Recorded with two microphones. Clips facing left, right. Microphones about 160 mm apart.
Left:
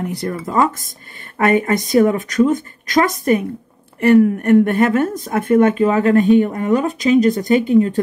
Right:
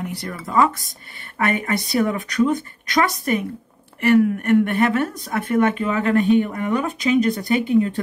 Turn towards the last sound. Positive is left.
turn(degrees=40)  # may be behind; listen again after turning